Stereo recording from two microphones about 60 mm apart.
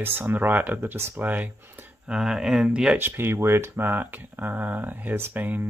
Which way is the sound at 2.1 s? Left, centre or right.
Centre.